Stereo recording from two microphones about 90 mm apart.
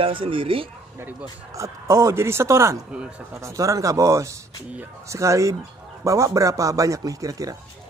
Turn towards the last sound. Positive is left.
turn(degrees=-40)  # may be behind; listen again after turning